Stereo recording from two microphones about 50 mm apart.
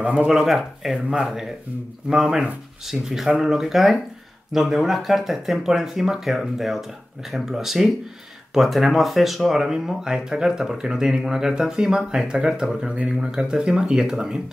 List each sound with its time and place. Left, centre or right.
0.0 s speech: right
0.3 s speech: centre
12.8 s speech: right
13.2 s speech: centre